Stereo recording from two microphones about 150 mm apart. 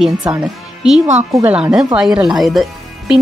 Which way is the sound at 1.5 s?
5° right (ahead or behind).